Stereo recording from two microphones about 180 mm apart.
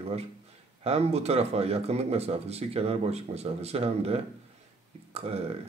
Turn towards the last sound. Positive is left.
turn(degrees=-35)  # may be behind; listen again after turning